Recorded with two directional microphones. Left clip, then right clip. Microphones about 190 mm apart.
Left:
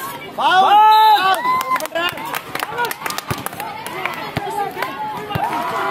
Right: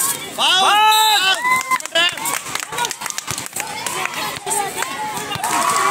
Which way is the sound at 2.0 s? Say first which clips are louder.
Right 3 dB; 50° left (ahead or behind).